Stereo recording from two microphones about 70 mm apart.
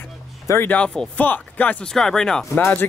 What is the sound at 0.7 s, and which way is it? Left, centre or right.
Speech, centre.